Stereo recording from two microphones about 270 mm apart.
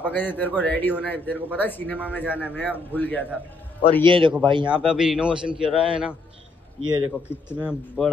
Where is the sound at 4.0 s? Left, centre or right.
Centre.